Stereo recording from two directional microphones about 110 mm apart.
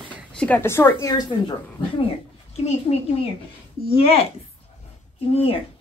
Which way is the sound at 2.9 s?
70° left (ahead or behind).